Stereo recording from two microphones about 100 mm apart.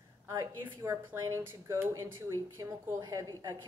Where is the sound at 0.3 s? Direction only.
30° right (ahead or behind).